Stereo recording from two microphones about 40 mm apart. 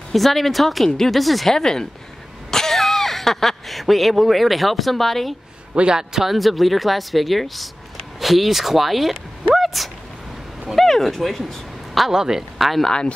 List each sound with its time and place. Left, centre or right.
0.1 s speech: centre
1.5 s speech: centre
5.8 s a man's voice: right
6.1 s speech: centre
12.1 s a woman's voice: centre